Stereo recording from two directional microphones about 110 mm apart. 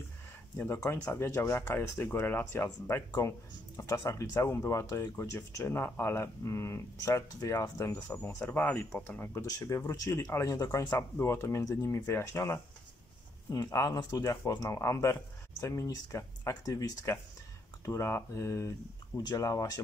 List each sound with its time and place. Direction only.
0.8 s speech: 20° left (ahead or behind)
9.5 s speech: 30° left (ahead or behind)